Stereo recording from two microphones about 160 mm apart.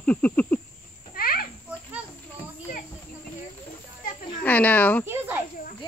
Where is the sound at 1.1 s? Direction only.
65° left (ahead or behind).